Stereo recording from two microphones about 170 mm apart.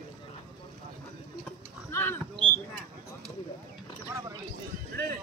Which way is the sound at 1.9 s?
15° left (ahead or behind).